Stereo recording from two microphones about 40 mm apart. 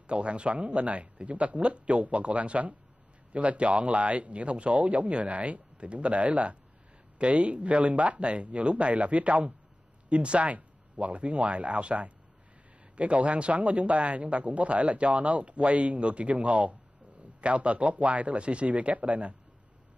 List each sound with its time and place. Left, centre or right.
0.0 s a man's voice: right